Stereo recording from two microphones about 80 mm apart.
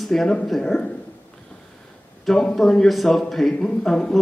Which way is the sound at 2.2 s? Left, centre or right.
Centre.